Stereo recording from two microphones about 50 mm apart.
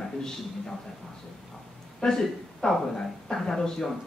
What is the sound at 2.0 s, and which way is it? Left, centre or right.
Speech, centre.